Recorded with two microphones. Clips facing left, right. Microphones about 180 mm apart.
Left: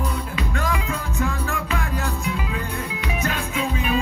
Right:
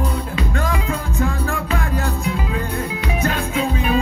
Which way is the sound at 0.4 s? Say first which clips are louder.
Right 2 dB; 35° right (ahead or behind).